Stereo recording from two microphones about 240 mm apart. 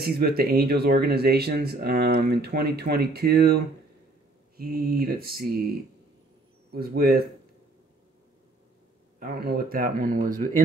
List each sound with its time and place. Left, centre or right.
0.0 s speech: right
6.7 s speech: right
9.2 s speech: right